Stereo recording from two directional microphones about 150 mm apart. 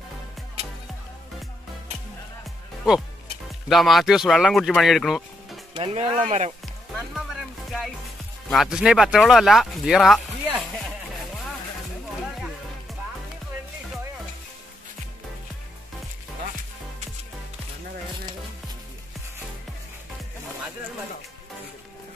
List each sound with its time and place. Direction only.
2.4 s music: centre (ahead or behind)
3.6 s speech: centre (ahead or behind)
5.8 s speech: 40° right (ahead or behind)
8.5 s speech: centre (ahead or behind)